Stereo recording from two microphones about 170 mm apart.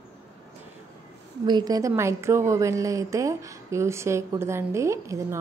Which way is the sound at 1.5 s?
25° right (ahead or behind).